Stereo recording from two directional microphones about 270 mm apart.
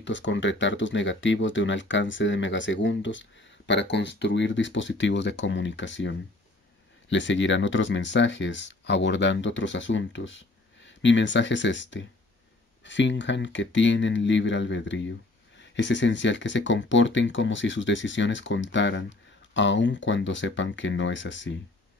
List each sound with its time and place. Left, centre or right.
0.0 s speech: left